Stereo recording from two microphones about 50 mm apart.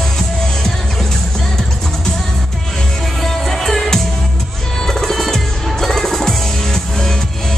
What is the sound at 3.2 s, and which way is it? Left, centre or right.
Music, centre.